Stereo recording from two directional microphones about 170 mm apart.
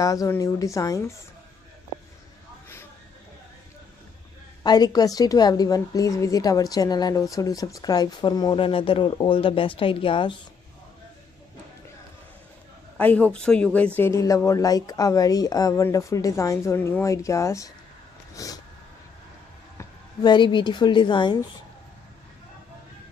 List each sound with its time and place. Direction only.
0.0 s a woman's voice: 20° left (ahead or behind)
4.6 s a woman's voice: 25° left (ahead or behind)
12.9 s speech: 10° left (ahead or behind)
18.3 s vehicle: 20° left (ahead or behind)
19.8 s a woman's voice: 25° left (ahead or behind)